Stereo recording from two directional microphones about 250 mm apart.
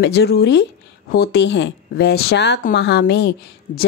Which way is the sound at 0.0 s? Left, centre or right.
Left.